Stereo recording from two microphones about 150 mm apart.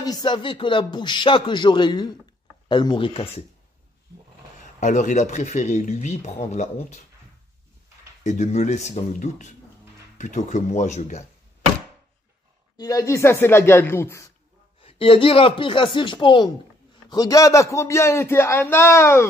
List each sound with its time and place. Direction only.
0.0 s a man's voice: 30° left (ahead or behind)
4.7 s speech: 55° left (ahead or behind)
8.2 s speech: 55° left (ahead or behind)
12.7 s speech: 20° left (ahead or behind)
14.8 s a man's voice: 40° left (ahead or behind); by 19.2 s 20° left (ahead or behind)